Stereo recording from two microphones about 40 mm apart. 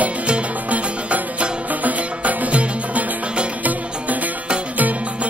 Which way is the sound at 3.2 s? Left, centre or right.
Right.